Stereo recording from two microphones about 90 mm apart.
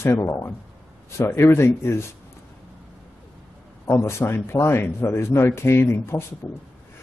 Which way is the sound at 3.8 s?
35° left (ahead or behind).